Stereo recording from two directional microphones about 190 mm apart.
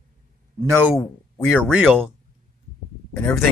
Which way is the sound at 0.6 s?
10° right (ahead or behind).